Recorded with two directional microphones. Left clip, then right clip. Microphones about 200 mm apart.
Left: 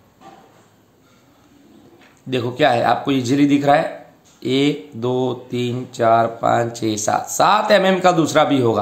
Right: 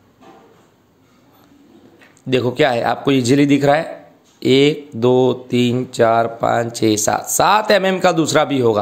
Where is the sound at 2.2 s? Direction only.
40° right (ahead or behind).